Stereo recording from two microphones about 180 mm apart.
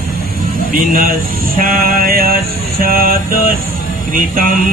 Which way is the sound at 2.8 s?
55° right (ahead or behind).